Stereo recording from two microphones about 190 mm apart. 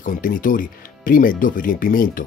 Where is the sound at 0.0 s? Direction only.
45° left (ahead or behind).